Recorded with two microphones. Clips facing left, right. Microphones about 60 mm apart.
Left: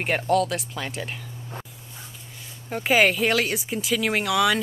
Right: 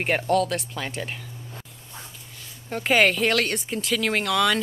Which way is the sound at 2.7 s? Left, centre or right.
Centre.